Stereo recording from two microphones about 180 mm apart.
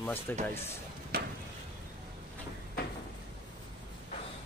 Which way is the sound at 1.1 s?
55° right (ahead or behind).